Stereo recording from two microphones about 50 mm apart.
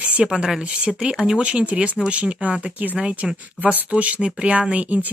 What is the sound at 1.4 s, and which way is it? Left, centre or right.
Speech, right.